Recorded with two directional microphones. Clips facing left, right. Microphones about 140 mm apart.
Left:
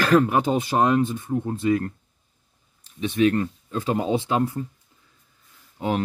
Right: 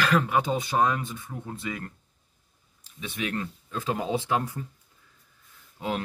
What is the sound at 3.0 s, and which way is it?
Speech, 30° left (ahead or behind).